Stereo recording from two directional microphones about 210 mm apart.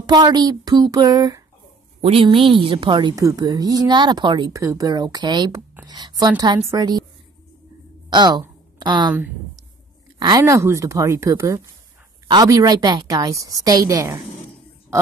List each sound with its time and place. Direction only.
0.0 s a woman's voice: 20° right (ahead or behind)
8.1 s a woman's voice: 20° right (ahead or behind)
10.1 s speech: 20° right (ahead or behind)